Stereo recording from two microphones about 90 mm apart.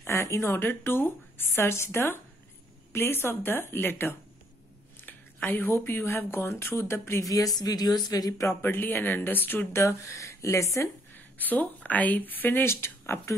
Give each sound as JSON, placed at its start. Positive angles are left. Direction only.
{"t": 0.0, "sound": "speech", "side_deg": 30}
{"t": 7.2, "sound": "speech", "side_deg": 40}
{"t": 8.6, "sound": "speech", "side_deg": 20}
{"t": 11.3, "sound": "speech", "side_deg": 20}